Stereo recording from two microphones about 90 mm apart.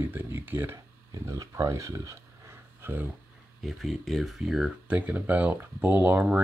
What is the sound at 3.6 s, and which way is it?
Speech, centre (ahead or behind).